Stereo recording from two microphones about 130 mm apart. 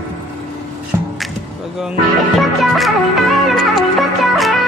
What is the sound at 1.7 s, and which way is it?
Music, centre (ahead or behind).